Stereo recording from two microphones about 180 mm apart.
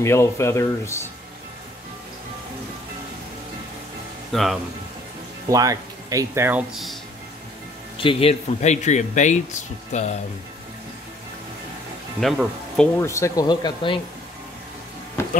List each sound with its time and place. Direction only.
0.0 s speech: 15° left (ahead or behind)
4.3 s speech: centre (ahead or behind)
5.5 s speech: 20° right (ahead or behind)
6.7 s speech: centre (ahead or behind)
8.0 s speech: 30° left (ahead or behind)
12.2 s speech: centre (ahead or behind)
13.0 s speech: 15° left (ahead or behind)